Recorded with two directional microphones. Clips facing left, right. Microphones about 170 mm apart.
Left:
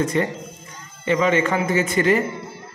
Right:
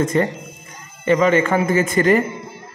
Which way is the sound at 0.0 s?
45° right (ahead or behind).